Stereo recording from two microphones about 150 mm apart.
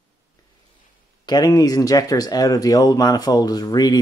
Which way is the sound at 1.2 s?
25° left (ahead or behind).